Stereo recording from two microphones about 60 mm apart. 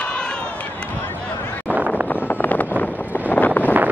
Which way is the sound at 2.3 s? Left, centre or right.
Left.